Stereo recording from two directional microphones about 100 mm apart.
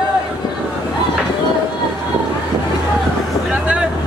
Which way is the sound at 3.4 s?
10° right (ahead or behind).